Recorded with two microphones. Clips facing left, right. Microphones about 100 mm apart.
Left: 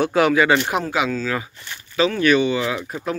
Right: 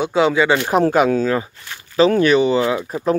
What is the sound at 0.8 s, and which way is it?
Speech, 50° right (ahead or behind).